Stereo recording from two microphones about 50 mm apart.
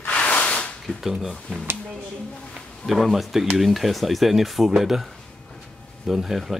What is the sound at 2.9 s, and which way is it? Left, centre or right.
Speech, centre.